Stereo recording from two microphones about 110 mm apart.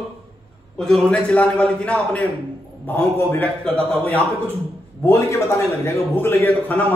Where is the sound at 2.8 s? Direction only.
20° left (ahead or behind).